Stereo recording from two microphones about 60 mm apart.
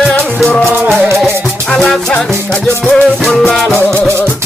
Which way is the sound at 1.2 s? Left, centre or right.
Centre.